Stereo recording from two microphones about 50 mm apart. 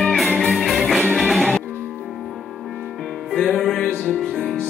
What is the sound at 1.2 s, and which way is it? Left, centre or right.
Music, centre.